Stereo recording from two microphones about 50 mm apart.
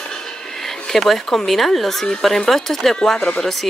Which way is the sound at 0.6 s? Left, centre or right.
Centre.